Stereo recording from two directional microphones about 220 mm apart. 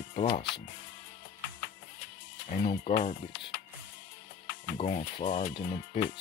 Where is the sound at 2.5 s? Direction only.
35° left (ahead or behind).